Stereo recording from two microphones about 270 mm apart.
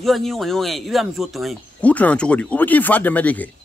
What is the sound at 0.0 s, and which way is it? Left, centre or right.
Speech, centre.